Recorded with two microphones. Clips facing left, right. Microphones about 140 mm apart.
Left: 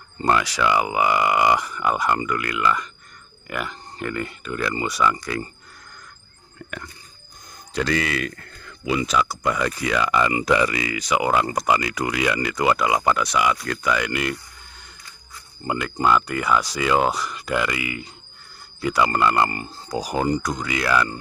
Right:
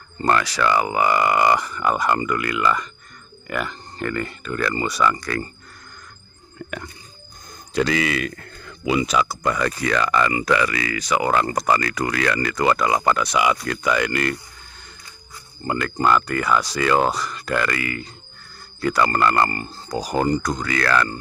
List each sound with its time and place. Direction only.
0.2 s speech: 10° left (ahead or behind)
8.0 s speech: 10° right (ahead or behind)
8.6 s a sound: 20° right (ahead or behind)
9.0 s speech: centre (ahead or behind)
13.3 s speech: 10° right (ahead or behind)
15.6 s speech: 10° left (ahead or behind)